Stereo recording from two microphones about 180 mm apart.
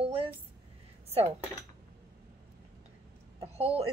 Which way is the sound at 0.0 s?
30° right (ahead or behind).